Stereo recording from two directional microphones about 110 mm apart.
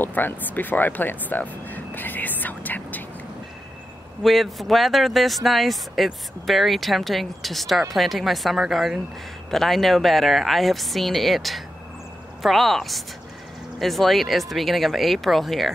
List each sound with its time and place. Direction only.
0.0 s speech: 15° left (ahead or behind)
4.2 s speech: centre (ahead or behind)